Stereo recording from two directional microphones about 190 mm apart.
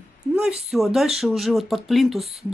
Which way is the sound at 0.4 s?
5° right (ahead or behind).